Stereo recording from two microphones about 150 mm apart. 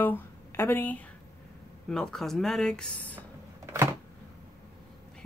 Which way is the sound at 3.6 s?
20° right (ahead or behind).